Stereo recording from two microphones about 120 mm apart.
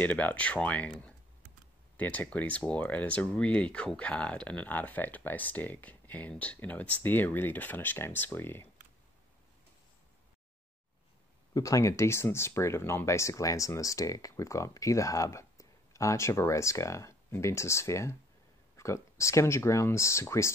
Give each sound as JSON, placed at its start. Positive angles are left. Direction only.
{"t": 0.0, "sound": "speech", "side_deg": 15}
{"t": 11.5, "sound": "speech", "side_deg": 30}